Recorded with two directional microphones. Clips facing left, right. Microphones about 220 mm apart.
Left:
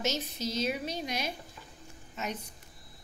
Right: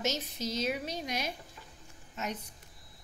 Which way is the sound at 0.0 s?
15° right (ahead or behind).